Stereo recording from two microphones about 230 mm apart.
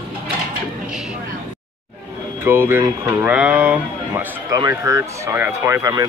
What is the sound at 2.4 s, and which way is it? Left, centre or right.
Speech, centre.